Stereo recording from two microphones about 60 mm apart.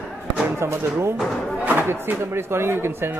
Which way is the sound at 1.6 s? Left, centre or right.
Right.